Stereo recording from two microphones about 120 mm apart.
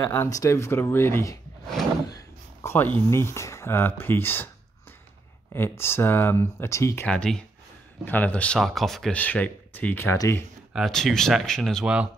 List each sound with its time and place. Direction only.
0.0 s speech: 15° left (ahead or behind)
5.5 s speech: 20° left (ahead or behind)
7.1 s speech: 5° left (ahead or behind)
8.5 s speech: centre (ahead or behind); by 10.4 s 25° left (ahead or behind)
10.7 s speech: centre (ahead or behind)
11.8 s speech: 10° right (ahead or behind)